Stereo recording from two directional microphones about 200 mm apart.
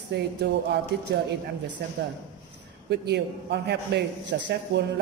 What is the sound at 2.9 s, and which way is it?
A woman's voice, 55° right (ahead or behind).